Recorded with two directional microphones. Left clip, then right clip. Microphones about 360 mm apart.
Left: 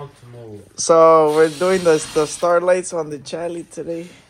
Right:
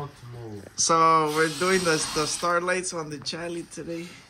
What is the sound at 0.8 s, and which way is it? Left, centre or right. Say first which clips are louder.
Speech: left 9 dB; centre.